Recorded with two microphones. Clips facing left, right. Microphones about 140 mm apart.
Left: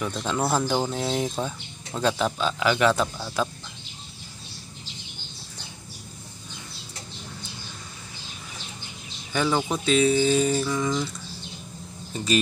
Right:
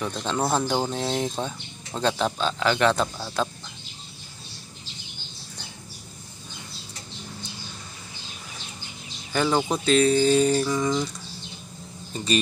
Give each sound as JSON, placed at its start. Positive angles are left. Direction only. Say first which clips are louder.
{"t": 0.1, "sound": "speech", "louder": "even", "side_deg": -5}
{"t": 0.5, "sound": "speech", "louder": "even", "side_deg": -15}
{"t": 0.9, "sound": "speech", "louder": "even", "side_deg": 5}
{"t": 9.3, "sound": "speech", "louder": "right 1 dB", "side_deg": 0}